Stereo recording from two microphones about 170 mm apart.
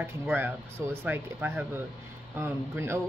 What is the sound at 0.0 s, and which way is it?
Speech, 10° right (ahead or behind).